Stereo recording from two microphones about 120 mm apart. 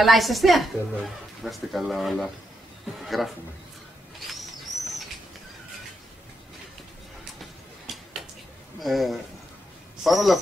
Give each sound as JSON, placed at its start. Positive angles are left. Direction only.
{"t": 0.0, "sound": "speech", "side_deg": 0}
{"t": 7.8, "sound": "a sound", "side_deg": 0}
{"t": 8.7, "sound": "speech", "side_deg": 0}